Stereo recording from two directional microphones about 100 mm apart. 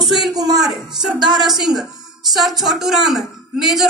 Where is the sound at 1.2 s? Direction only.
45° right (ahead or behind).